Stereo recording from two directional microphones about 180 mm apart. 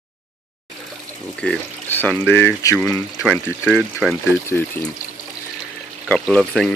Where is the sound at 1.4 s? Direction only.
10° left (ahead or behind).